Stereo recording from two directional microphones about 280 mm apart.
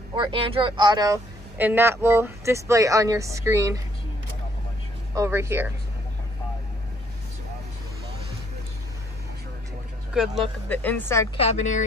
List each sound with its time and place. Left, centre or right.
0.1 s speech: centre
5.1 s speech: centre
10.1 s speech: centre
11.3 s a woman's voice: left